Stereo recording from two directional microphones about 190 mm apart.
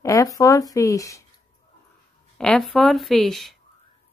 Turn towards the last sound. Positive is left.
turn(degrees=0)  # may be behind; listen again after turning